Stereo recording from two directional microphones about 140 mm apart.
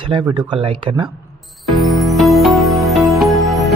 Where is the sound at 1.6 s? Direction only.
Centre (ahead or behind).